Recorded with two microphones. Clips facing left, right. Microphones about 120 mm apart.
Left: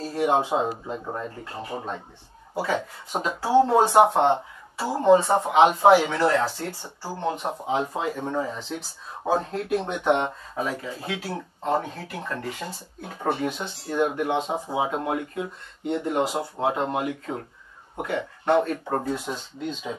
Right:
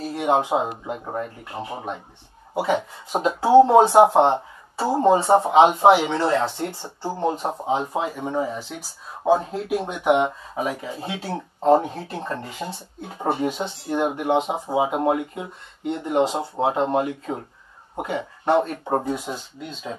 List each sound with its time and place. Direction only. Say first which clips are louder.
0.0 s speech: right 1 dB; 20° right (ahead or behind)
11.0 s speech: right 2 dB; 25° right (ahead or behind); by 20.0 s centre (ahead or behind)